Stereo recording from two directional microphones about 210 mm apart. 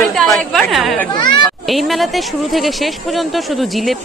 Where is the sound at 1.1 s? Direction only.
20° left (ahead or behind).